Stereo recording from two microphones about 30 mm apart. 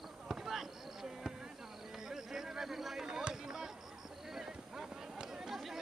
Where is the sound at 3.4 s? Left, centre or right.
Centre.